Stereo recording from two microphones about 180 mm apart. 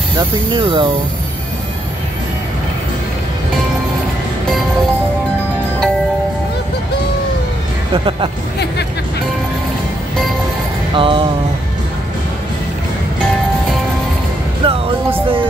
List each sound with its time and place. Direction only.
0.5 s speech: 25° right (ahead or behind)
7.9 s speech: 30° right (ahead or behind)
11.0 s speech: 30° right (ahead or behind)
14.6 s music: 30° right (ahead or behind)